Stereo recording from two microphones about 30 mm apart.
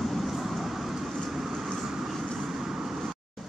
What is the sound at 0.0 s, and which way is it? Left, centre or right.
Vehicle, centre.